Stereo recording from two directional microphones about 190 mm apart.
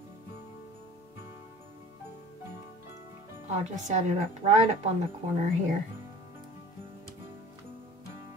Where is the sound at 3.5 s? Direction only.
40° right (ahead or behind).